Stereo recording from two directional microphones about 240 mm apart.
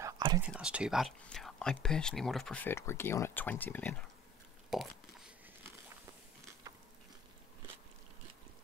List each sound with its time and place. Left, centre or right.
0.0 s whispering: centre
0.4 s speech: centre
4.6 s a sound: centre